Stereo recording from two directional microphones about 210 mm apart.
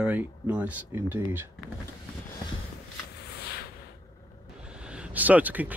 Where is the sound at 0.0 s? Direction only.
5° right (ahead or behind).